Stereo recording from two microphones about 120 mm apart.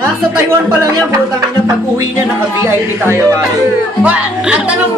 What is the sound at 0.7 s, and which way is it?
Speech, 25° right (ahead or behind).